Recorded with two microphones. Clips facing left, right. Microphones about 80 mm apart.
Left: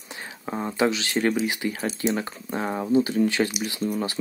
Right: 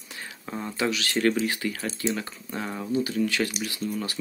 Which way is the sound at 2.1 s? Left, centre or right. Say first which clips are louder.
Left 4 dB; left.